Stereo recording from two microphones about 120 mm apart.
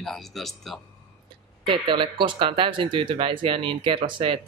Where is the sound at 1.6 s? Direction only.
45° right (ahead or behind).